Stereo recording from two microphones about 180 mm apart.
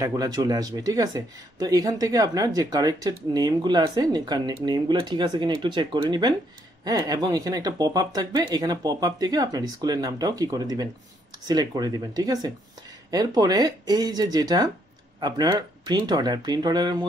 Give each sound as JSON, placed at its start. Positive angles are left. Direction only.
{"t": 0.0, "sound": "speech", "side_deg": -20}